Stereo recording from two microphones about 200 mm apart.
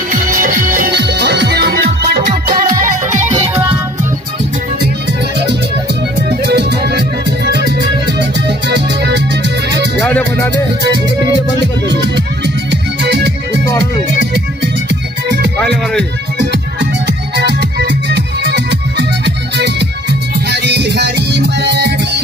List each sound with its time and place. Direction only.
0.1 s music: 40° right (ahead or behind)
3.1 s music: 35° right (ahead or behind)
6.4 s music: 55° right (ahead or behind)
9.9 s music: 5° left (ahead or behind)
13.0 s music: 55° right (ahead or behind)
15.6 s music: 5° left (ahead or behind)
17.4 s music: 55° right (ahead or behind)